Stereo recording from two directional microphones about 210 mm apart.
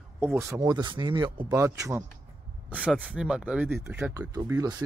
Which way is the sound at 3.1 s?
5° right (ahead or behind).